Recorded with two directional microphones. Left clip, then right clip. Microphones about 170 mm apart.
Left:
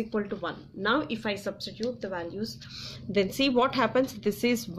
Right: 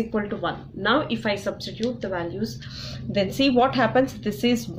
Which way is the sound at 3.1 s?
40° left (ahead or behind).